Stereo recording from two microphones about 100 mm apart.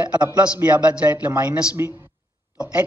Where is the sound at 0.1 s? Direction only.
10° right (ahead or behind).